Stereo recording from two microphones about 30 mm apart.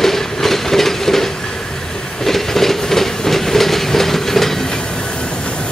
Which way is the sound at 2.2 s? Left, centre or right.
Centre.